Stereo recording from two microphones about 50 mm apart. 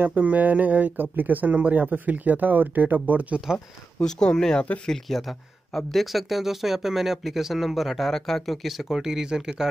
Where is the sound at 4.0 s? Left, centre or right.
Centre.